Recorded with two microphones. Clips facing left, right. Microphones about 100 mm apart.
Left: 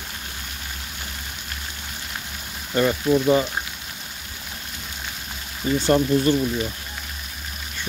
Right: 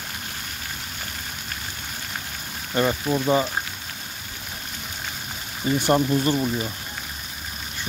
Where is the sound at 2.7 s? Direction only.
10° right (ahead or behind).